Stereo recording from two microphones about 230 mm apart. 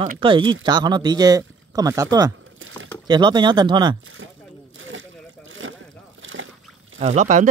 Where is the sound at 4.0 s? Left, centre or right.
Right.